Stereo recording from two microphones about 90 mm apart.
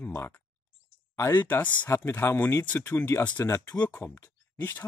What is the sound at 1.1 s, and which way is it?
Speech, 25° left (ahead or behind).